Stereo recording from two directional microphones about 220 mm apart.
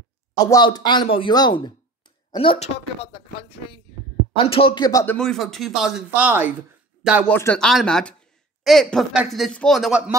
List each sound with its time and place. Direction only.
0.4 s speech: 20° left (ahead or behind)
5.1 s a man's voice: centre (ahead or behind)